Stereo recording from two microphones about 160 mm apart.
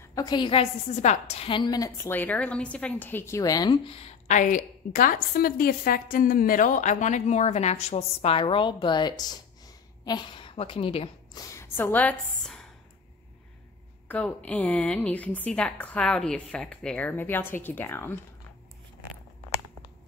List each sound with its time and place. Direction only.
0.0 s a woman's voice: 25° left (ahead or behind)
2.0 s a woman's voice: 10° left (ahead or behind); by 4.1 s 35° left (ahead or behind)
4.3 s a woman's voice: 55° left (ahead or behind); by 11.1 s 35° left (ahead or behind)
11.3 s a woman's voice: 15° left (ahead or behind)
14.0 s a woman's voice: 10° left (ahead or behind)